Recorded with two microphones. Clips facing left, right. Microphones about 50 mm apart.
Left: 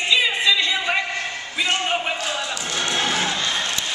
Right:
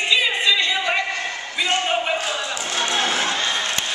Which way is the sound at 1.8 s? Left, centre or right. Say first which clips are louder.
Right 1 dB; centre.